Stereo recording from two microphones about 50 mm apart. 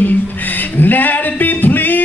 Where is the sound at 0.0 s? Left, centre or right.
Left.